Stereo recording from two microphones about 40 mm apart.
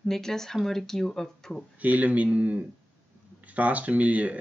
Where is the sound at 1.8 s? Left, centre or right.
Right.